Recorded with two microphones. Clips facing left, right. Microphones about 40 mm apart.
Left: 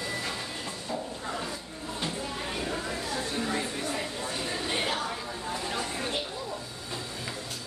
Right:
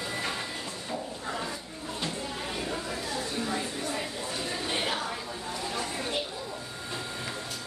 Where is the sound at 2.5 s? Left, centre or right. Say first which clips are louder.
Left 1 dB; centre.